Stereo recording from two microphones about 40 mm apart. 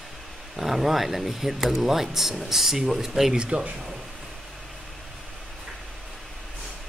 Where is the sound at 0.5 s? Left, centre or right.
Centre.